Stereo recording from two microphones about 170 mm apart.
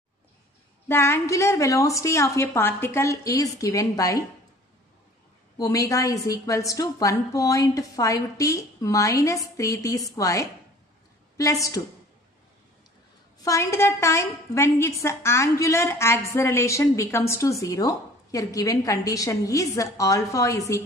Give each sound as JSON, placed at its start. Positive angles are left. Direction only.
{"t": 0.8, "sound": "a woman's voice", "side_deg": 15}
{"t": 5.6, "sound": "a woman's voice", "side_deg": 20}
{"t": 13.4, "sound": "a woman's voice", "side_deg": 20}